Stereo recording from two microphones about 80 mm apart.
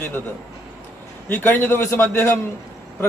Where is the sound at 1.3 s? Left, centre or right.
Left.